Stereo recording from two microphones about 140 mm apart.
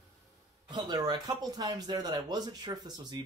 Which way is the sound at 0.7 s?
30° right (ahead or behind).